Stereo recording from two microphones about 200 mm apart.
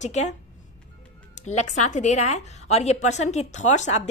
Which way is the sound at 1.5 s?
35° left (ahead or behind).